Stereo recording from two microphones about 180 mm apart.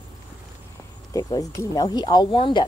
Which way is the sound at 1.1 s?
20° left (ahead or behind).